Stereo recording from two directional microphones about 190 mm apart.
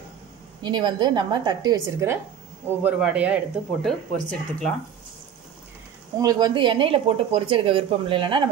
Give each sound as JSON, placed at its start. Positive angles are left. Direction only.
{"t": 0.6, "sound": "speech", "side_deg": -25}
{"t": 3.8, "sound": "speech", "side_deg": 5}
{"t": 6.1, "sound": "speech", "side_deg": -20}